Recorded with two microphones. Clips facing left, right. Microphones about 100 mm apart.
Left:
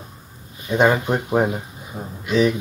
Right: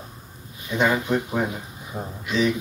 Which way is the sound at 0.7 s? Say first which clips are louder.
Left 4 dB; 40° left (ahead or behind).